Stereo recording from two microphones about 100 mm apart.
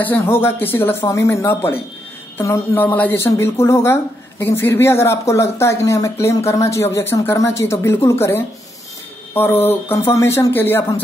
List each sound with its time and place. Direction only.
0.0 s speech: 20° left (ahead or behind)
2.8 s speech: 20° left (ahead or behind)